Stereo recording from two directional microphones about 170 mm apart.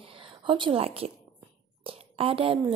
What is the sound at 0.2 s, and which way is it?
A woman's voice, 30° right (ahead or behind).